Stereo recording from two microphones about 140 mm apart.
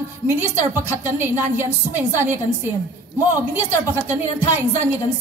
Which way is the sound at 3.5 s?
15° right (ahead or behind).